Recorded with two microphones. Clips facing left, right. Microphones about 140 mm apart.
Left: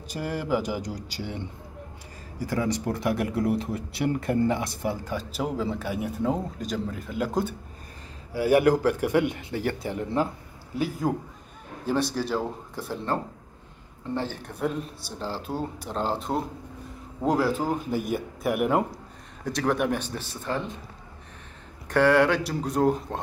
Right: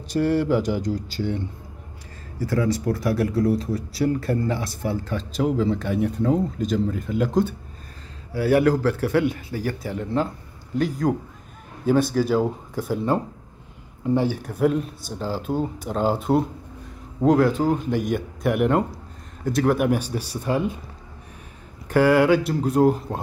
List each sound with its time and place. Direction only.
0.1 s speech: 10° left (ahead or behind)
8.3 s speech: 15° left (ahead or behind)
9.9 s speech: 10° left (ahead or behind); by 20.7 s 10° right (ahead or behind)
21.8 s speech: 5° right (ahead or behind)